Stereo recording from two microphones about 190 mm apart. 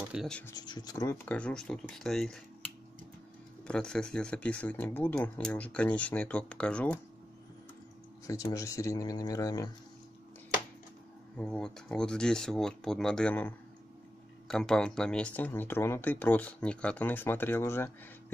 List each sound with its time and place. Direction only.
0.0 s speech: 5° right (ahead or behind)
0.5 s speech: 20° left (ahead or behind); by 2.4 s centre (ahead or behind)
3.6 s speech: 5° left (ahead or behind)
8.3 s speech: 15° left (ahead or behind)
11.3 s speech: 5° left (ahead or behind)